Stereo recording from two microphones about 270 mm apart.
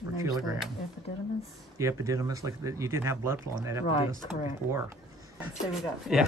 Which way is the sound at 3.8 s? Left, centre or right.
Centre.